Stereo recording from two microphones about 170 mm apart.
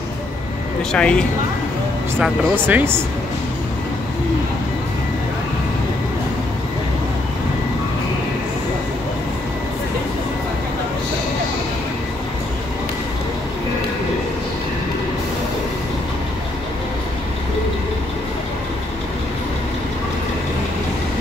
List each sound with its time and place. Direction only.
0.9 s speech: 5° left (ahead or behind)
2.1 s speech: 10° right (ahead or behind)